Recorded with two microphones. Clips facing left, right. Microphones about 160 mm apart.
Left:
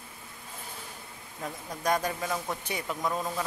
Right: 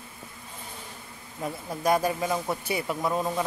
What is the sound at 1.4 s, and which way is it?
Speech, 10° right (ahead or behind).